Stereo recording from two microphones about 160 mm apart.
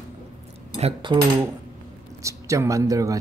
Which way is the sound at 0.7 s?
35° right (ahead or behind).